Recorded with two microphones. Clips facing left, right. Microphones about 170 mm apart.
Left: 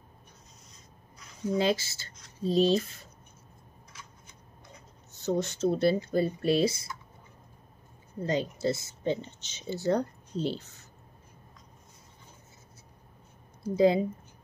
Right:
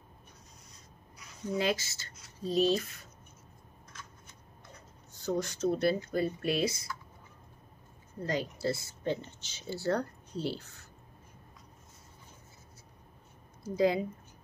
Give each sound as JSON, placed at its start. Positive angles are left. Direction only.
{"t": 1.6, "sound": "speech", "side_deg": 30}
{"t": 2.1, "sound": "a sound", "side_deg": -5}
{"t": 2.5, "sound": "speech", "side_deg": 30}
{"t": 5.1, "sound": "speech", "side_deg": 20}
{"t": 8.2, "sound": "speech", "side_deg": 20}
{"t": 13.7, "sound": "speech", "side_deg": 25}